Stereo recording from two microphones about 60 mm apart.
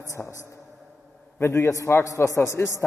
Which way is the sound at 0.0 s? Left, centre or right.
Left.